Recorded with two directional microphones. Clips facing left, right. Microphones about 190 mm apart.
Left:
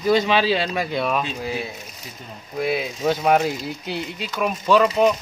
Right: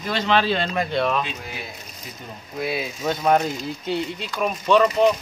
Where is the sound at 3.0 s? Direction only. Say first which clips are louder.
Left 1 dB; 5° left (ahead or behind).